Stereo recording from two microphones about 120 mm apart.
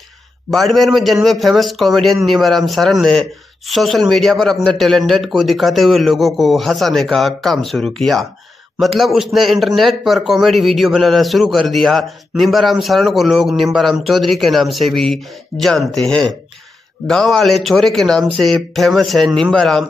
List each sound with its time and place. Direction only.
0.5 s a man's voice: centre (ahead or behind)